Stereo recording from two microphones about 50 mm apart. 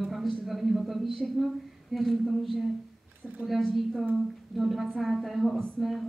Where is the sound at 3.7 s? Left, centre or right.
Centre.